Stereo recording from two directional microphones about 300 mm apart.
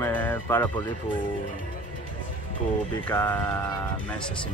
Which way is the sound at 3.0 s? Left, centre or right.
Centre.